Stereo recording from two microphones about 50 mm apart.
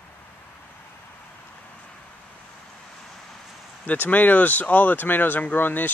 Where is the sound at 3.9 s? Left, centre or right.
Left.